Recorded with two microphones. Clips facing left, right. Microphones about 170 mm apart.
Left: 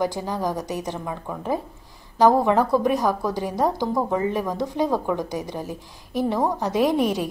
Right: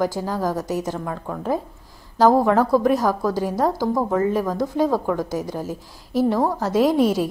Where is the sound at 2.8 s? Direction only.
15° left (ahead or behind).